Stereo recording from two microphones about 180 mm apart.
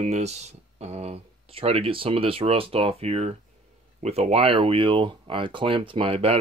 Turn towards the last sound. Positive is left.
turn(degrees=-35)  # may be behind; listen again after turning